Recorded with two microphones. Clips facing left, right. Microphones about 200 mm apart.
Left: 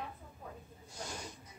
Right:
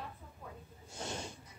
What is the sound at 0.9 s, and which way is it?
Snake, 25° right (ahead or behind).